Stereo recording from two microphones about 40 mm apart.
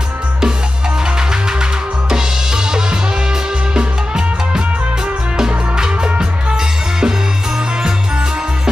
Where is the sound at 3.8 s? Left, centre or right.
Centre.